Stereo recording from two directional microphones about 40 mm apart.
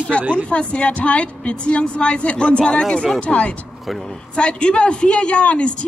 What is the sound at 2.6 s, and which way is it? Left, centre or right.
Speech, centre.